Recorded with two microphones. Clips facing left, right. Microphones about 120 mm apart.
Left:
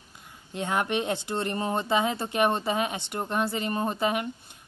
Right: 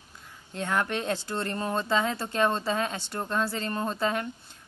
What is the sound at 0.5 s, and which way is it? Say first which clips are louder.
Speech: left 1 dB; 15° left (ahead or behind).